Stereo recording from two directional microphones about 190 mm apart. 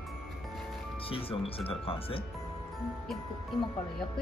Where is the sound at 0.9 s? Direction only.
30° left (ahead or behind).